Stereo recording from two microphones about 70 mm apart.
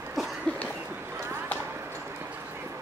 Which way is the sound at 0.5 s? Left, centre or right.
Centre.